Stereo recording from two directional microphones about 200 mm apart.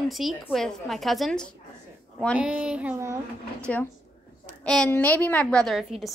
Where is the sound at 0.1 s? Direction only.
Centre (ahead or behind).